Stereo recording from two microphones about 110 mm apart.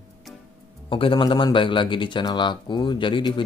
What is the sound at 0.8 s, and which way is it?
Speech, 55° left (ahead or behind).